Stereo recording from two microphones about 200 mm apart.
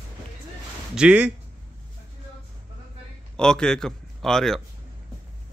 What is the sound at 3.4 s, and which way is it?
A man's voice, 5° left (ahead or behind).